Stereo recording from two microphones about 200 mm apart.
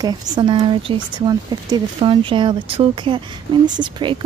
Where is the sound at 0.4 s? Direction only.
25° right (ahead or behind).